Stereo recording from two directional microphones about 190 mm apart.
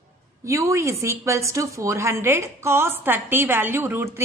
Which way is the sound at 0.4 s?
15° right (ahead or behind).